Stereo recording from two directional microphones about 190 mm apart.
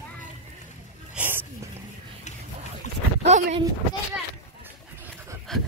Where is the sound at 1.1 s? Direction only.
10° right (ahead or behind).